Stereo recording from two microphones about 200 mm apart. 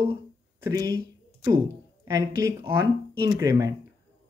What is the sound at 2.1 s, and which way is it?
Speech, 15° right (ahead or behind).